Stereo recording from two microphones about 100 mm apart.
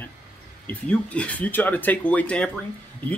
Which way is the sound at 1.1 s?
15° left (ahead or behind).